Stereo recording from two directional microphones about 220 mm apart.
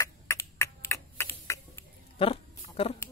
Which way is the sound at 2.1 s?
25° left (ahead or behind).